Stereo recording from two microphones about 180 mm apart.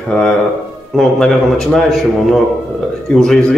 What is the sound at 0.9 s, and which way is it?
A man's voice, centre (ahead or behind).